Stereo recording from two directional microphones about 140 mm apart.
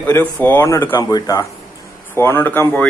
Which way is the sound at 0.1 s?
15° left (ahead or behind).